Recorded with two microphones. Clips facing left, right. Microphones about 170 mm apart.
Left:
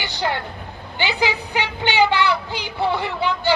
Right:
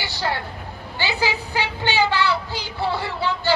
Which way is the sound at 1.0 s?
15° left (ahead or behind).